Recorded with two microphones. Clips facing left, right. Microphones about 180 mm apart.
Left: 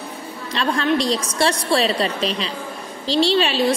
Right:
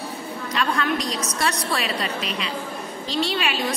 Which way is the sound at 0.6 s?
30° left (ahead or behind).